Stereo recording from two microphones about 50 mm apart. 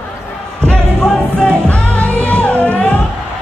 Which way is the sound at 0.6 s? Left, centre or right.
Centre.